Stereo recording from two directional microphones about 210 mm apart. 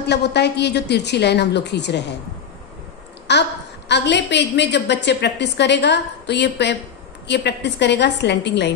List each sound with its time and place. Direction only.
0.0 s a woman's voice: 50° left (ahead or behind)
3.3 s a woman's voice: 55° left (ahead or behind)